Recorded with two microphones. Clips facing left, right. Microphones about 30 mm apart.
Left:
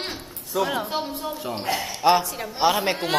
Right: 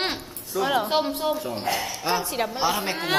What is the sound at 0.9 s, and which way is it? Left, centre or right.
Speech, right.